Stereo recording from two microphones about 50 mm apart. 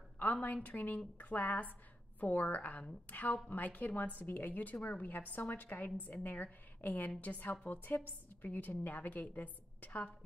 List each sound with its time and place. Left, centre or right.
0.2 s a woman's voice: left